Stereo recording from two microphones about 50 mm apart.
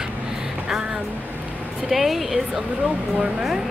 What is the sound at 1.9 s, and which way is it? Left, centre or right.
Speech, centre.